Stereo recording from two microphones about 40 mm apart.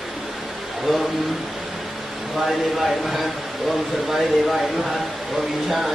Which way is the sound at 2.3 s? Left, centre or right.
Centre.